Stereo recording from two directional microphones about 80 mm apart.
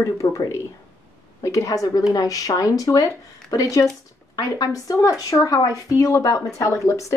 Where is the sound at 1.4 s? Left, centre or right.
Left.